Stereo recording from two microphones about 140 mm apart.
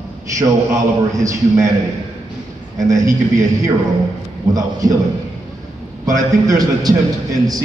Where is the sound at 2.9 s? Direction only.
25° right (ahead or behind).